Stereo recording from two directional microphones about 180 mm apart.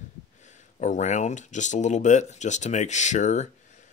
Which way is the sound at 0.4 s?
40° left (ahead or behind).